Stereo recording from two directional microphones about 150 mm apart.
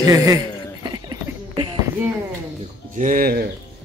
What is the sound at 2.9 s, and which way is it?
Speech, 60° right (ahead or behind).